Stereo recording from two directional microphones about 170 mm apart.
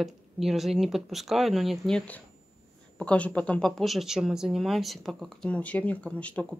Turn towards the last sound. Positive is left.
turn(degrees=10)  # may be behind; listen again after turning